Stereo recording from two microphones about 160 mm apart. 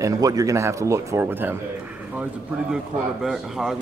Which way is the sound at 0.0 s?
20° right (ahead or behind).